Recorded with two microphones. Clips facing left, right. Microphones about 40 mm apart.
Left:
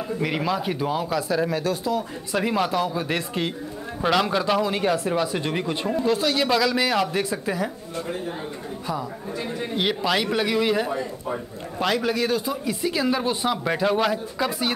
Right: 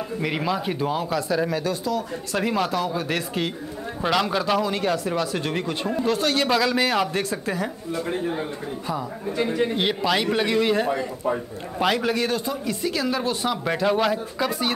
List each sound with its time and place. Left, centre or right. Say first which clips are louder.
0.2 s speech: even; centre
9.4 s a man's voice: right 8 dB; right
9.8 s speech: even; centre